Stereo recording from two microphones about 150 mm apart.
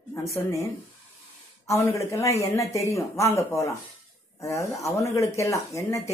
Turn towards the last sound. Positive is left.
turn(degrees=20)  # may be behind; listen again after turning